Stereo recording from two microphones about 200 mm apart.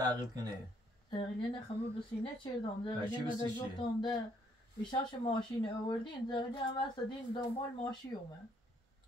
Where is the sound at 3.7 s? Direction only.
20° left (ahead or behind).